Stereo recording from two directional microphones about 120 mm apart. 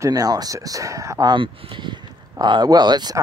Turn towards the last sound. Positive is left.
turn(degrees=-35)  # may be behind; listen again after turning